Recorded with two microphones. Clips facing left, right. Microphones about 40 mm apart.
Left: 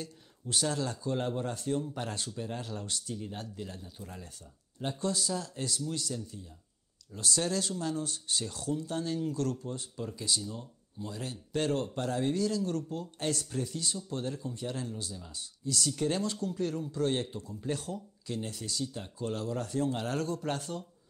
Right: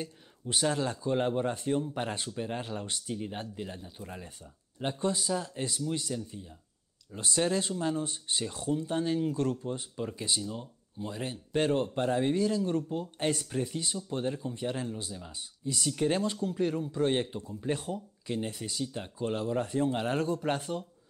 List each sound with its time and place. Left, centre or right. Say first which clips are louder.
0.0 s speech: right 3 dB; right